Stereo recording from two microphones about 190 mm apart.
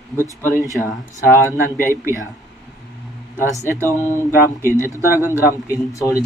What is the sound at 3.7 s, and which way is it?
Speech, 15° right (ahead or behind).